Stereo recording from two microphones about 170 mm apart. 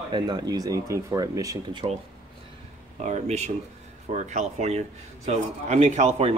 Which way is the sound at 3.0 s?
40° right (ahead or behind).